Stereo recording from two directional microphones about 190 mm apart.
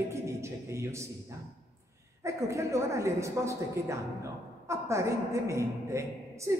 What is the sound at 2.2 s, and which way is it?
A woman's voice, 15° right (ahead or behind).